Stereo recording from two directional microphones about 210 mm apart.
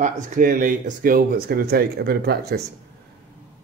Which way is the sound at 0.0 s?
40° right (ahead or behind).